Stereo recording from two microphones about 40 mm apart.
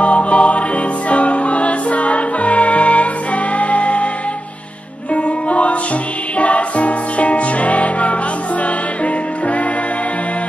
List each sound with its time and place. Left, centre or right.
0.0 s music: left
5.1 s music: left